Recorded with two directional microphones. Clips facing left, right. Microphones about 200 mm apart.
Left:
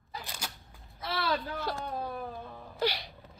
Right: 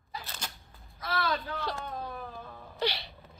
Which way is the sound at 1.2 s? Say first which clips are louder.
Left 2 dB; 10° left (ahead or behind).